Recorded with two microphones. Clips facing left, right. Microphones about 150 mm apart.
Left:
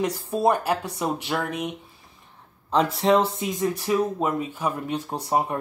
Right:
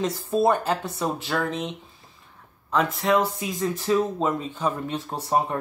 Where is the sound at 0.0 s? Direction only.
15° left (ahead or behind).